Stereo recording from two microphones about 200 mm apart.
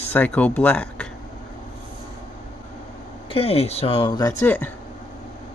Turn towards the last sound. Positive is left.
turn(degrees=10)  # may be behind; listen again after turning